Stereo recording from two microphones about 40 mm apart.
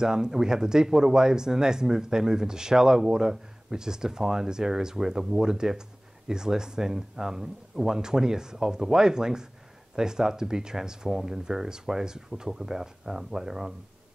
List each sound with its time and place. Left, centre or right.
0.0 s speech: centre